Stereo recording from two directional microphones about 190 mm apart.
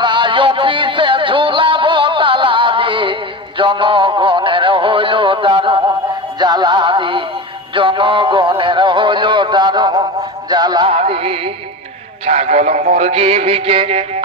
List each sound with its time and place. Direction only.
0.0 s music: 25° right (ahead or behind)